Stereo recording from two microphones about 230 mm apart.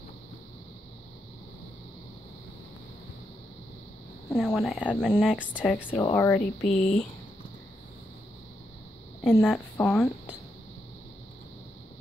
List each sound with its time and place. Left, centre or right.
4.3 s speech: centre
5.9 s speech: centre
9.2 s speech: centre